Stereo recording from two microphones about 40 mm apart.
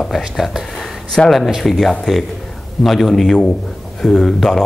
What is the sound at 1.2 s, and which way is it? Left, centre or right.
Speech, centre.